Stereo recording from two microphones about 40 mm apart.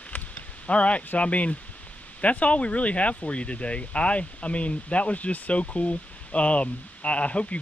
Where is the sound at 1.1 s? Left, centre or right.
Left.